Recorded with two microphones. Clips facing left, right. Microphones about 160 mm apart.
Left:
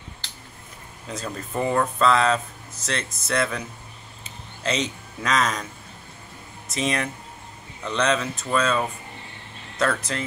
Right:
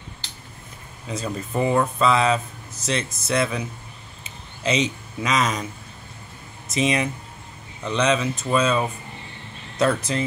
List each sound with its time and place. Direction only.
1.0 s speech: 5° right (ahead or behind)
4.2 s a sound: 10° right (ahead or behind)
6.7 s speech: 10° right (ahead or behind)